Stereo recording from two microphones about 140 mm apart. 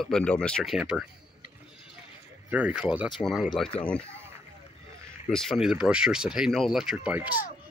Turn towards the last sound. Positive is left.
turn(degrees=-10)  # may be behind; listen again after turning